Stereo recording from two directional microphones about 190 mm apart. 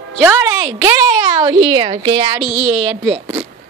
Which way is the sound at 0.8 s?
20° right (ahead or behind).